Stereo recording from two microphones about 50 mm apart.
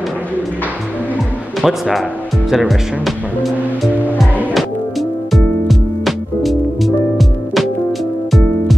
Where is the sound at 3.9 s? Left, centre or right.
Left.